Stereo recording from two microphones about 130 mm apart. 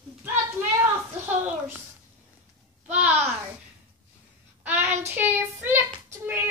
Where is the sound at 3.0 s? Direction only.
10° right (ahead or behind).